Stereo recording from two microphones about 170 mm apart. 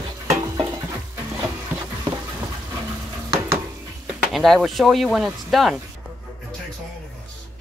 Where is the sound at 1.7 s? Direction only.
10° right (ahead or behind).